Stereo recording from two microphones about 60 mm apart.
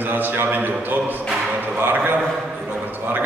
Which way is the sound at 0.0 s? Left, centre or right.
Right.